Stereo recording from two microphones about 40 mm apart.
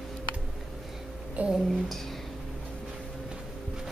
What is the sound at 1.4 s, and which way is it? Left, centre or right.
Speech, right.